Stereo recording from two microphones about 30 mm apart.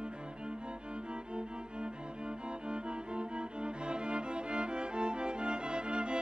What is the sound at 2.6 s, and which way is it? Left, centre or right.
Music, right.